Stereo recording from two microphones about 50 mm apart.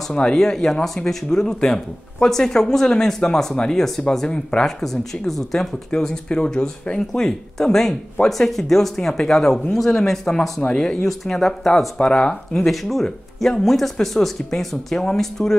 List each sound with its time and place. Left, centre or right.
0.1 s speech: centre
4.3 s speech: centre
4.6 s speech: centre
12.0 s speech: centre
12.5 s speech: centre